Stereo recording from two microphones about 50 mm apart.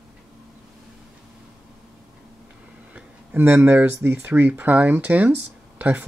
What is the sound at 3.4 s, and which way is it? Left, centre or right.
Speech, right.